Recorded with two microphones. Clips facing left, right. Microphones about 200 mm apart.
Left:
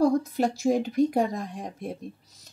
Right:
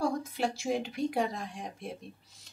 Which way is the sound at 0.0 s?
40° left (ahead or behind).